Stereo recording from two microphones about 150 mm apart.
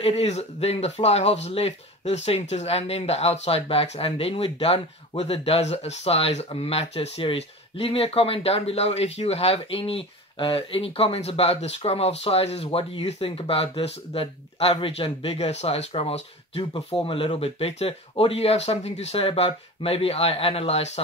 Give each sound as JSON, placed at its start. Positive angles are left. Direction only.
{"t": 0.0, "sound": "speech", "side_deg": 40}